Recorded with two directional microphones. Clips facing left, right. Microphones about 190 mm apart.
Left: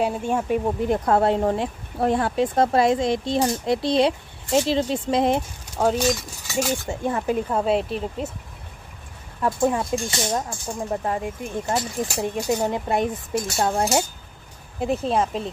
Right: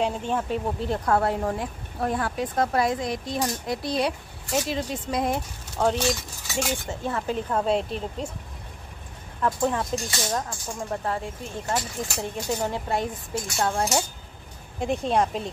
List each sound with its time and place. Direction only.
0.0 s speech: 10° left (ahead or behind); by 5.4 s 25° left (ahead or behind)
5.9 s speech: centre (ahead or behind)
6.9 s speech: 15° left (ahead or behind)
9.4 s speech: 10° left (ahead or behind)
14.8 s speech: centre (ahead or behind)